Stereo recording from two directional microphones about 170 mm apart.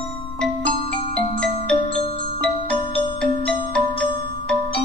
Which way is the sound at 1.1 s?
5° left (ahead or behind).